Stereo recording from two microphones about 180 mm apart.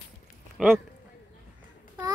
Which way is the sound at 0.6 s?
5° right (ahead or behind).